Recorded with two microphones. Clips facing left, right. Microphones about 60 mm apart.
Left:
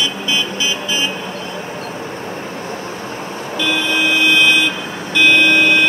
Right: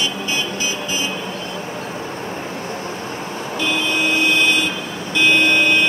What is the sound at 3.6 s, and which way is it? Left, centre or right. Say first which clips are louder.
Vehicle: left 3 dB; left.